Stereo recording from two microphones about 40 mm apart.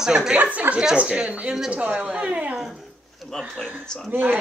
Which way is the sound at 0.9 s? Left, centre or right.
Right.